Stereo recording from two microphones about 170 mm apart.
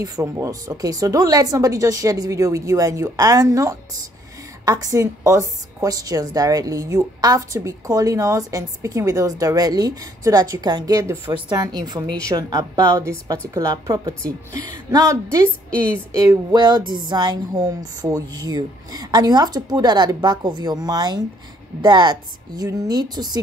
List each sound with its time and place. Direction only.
0.0 s a woman's voice: 20° right (ahead or behind)
16.2 s a woman's voice: 25° right (ahead or behind)